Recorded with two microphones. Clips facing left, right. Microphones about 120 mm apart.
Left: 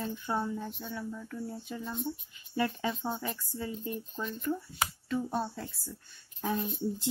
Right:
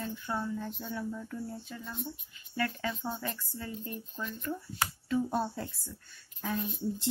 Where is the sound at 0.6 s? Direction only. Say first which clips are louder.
Right 1 dB; centre (ahead or behind).